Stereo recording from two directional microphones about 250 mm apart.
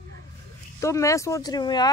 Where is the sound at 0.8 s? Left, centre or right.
Centre.